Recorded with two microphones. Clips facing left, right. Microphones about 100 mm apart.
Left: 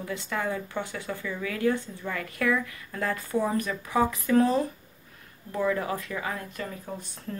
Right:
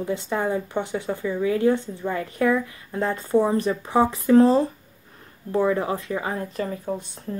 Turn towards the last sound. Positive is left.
turn(degrees=-35)  # may be behind; listen again after turning